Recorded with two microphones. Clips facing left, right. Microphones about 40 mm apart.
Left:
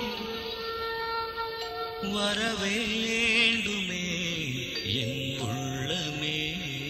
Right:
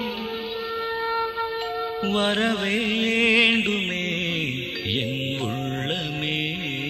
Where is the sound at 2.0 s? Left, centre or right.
Right.